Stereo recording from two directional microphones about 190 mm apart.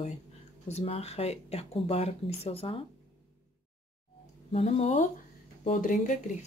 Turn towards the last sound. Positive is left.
turn(degrees=40)  # may be behind; listen again after turning